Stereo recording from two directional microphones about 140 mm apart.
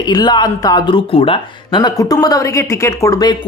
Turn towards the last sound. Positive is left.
turn(degrees=30)  # may be behind; listen again after turning